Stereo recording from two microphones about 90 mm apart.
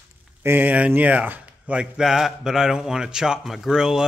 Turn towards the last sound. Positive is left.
turn(degrees=-5)  # may be behind; listen again after turning